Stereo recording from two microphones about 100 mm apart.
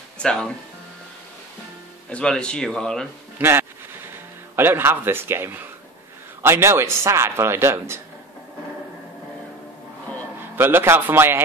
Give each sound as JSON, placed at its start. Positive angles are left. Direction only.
{"t": 0.2, "sound": "speech", "side_deg": 10}
{"t": 2.0, "sound": "speech", "side_deg": 10}
{"t": 3.3, "sound": "a man's voice", "side_deg": -25}
{"t": 10.4, "sound": "a man's voice", "side_deg": -20}